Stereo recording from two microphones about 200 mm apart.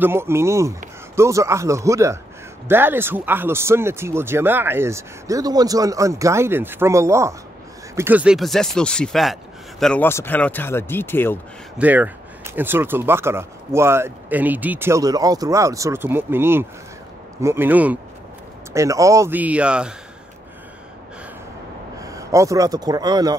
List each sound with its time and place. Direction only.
0.0 s speech: 10° right (ahead or behind); by 11.3 s 10° left (ahead or behind)
11.8 s speech: 10° right (ahead or behind)
22.0 s a man's voice: 15° right (ahead or behind)